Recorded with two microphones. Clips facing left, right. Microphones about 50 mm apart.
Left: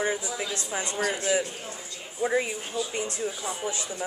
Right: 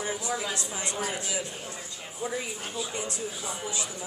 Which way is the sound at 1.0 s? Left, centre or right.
Left.